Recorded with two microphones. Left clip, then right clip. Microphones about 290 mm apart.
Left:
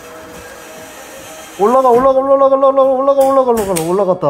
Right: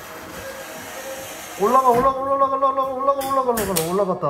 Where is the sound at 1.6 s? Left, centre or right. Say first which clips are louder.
Left 8 dB; left.